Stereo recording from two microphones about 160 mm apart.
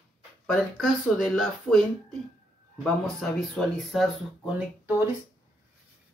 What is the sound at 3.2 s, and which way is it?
Speech, centre (ahead or behind).